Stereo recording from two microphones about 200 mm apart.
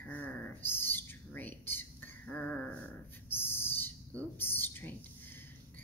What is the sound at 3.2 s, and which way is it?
Bird, 10° left (ahead or behind).